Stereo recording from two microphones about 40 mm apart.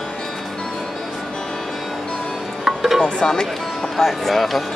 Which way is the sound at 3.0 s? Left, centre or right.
Centre.